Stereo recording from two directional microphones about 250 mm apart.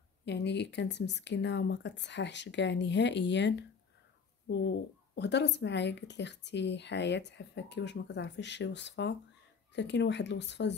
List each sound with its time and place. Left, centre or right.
0.2 s speech: left